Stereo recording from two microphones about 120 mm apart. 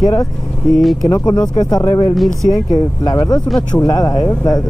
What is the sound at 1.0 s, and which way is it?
Speech, 30° left (ahead or behind).